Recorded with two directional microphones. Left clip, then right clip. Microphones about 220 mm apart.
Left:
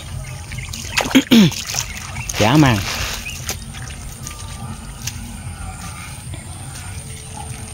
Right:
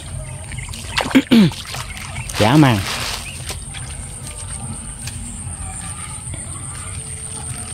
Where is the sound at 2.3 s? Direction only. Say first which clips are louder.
Right 1 dB; 10° right (ahead or behind).